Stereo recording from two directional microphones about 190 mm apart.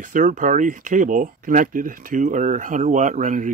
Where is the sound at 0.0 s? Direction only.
45° right (ahead or behind).